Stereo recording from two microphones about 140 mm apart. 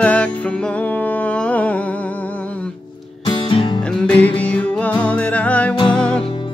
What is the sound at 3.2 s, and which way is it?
Music, 40° left (ahead or behind).